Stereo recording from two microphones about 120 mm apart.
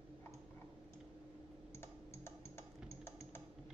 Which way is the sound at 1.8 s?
20° left (ahead or behind).